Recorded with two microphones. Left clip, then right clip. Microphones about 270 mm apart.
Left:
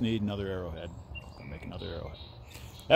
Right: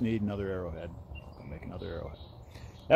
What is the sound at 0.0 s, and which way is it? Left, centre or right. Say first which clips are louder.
Speech: even; centre.